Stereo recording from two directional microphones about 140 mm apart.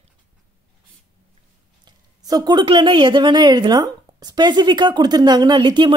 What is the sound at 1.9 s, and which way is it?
A woman's voice, 30° right (ahead or behind).